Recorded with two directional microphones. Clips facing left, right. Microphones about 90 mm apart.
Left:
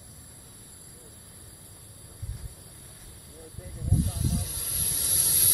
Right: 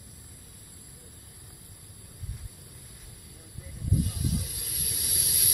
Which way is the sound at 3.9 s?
25° left (ahead or behind).